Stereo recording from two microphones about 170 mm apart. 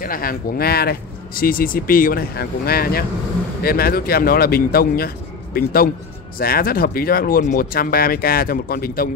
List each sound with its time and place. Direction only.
0.0 s speech: 55° left (ahead or behind)